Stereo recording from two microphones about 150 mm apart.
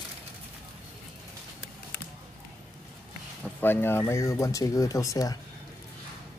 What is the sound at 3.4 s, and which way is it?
Speech, 15° left (ahead or behind).